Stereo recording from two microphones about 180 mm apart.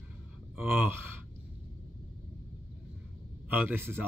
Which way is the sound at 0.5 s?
10° right (ahead or behind).